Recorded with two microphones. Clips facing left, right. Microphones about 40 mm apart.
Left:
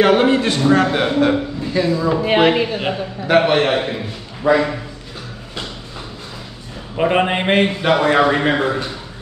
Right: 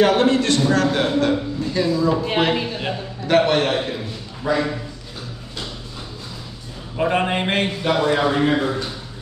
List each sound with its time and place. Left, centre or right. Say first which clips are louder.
0.0 s a man's voice: left 3 dB; left
1.6 s a sound: left 2 dB; centre
1.9 s a man's voice: left 3 dB; left
7.0 s a man's voice: left 3 dB; left
7.8 s a man's voice: left 2 dB; left